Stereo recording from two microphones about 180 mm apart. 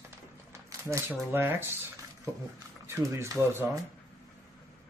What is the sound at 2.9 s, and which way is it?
Speech, 15° right (ahead or behind).